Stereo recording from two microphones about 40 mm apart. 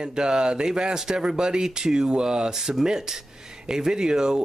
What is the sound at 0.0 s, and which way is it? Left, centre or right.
Speech, centre.